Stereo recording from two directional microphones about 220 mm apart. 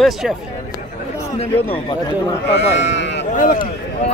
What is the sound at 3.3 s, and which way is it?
Speech, 35° left (ahead or behind).